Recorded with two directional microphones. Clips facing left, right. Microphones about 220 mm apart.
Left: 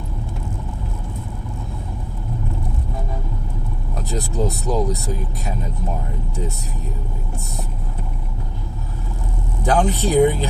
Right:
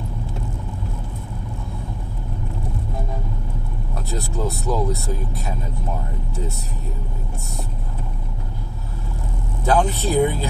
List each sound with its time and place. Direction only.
4.1 s speech: 15° left (ahead or behind)
9.7 s speech: 15° left (ahead or behind)